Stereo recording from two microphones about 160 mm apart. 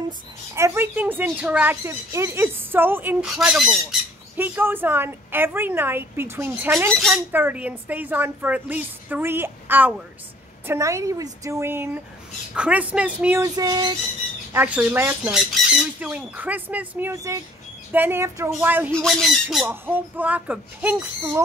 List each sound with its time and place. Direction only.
0.6 s speech: 15° right (ahead or behind)
3.3 s speech: centre (ahead or behind)
4.4 s speech: 15° right (ahead or behind)
6.9 s speech: centre (ahead or behind)
7.3 s speech: 10° right (ahead or behind)
13.4 s speech: 25° right (ahead or behind)
14.5 s speech: 10° right (ahead or behind)
18.9 s speech: 5° left (ahead or behind)